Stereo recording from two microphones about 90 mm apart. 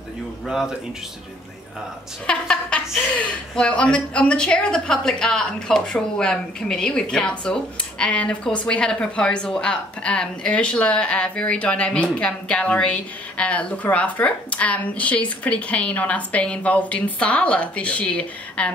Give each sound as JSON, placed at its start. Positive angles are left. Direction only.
{"t": 0.5, "sound": "speech", "side_deg": -5}
{"t": 2.2, "sound": "a woman's voice", "side_deg": 10}